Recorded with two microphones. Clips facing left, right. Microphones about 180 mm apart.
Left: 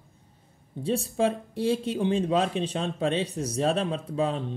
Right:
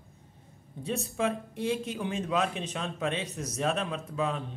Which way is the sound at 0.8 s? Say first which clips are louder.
Left 5 dB; 30° left (ahead or behind).